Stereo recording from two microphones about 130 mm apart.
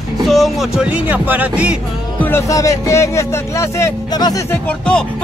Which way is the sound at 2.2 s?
20° left (ahead or behind).